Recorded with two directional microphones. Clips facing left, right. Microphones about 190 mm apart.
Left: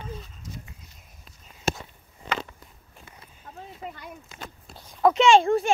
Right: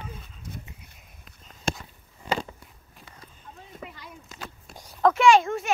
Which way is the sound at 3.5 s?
45° left (ahead or behind).